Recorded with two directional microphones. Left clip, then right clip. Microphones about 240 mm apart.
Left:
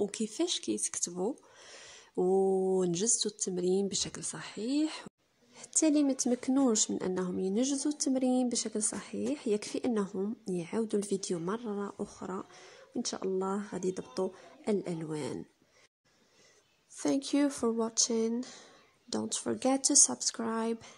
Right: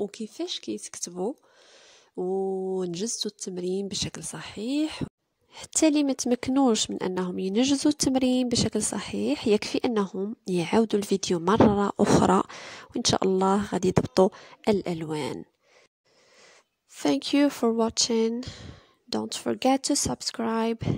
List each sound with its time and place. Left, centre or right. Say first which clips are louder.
0.0 s speech: even; centre; by 15.4 s right
16.9 s speech: right 6 dB; right